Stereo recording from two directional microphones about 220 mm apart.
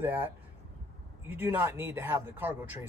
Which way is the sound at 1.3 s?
10° right (ahead or behind).